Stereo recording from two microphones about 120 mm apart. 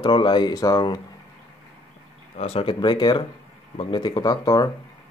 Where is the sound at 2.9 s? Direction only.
40° left (ahead or behind).